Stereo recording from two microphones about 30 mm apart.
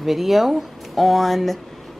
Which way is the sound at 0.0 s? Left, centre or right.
Centre.